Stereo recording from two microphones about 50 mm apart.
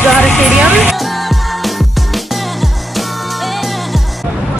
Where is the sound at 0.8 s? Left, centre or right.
Centre.